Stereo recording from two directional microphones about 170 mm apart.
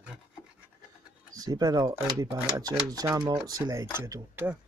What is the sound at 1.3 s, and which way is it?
Speech, 20° right (ahead or behind).